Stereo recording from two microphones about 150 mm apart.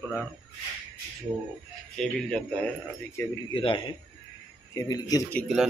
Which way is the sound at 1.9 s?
5° left (ahead or behind).